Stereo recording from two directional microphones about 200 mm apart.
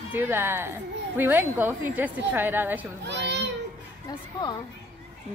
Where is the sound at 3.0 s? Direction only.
60° right (ahead or behind).